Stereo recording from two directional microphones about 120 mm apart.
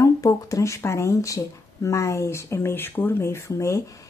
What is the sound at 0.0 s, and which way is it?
Speech, 30° left (ahead or behind).